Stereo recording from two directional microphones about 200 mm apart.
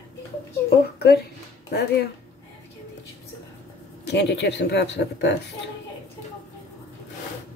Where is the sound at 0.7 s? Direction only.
55° left (ahead or behind).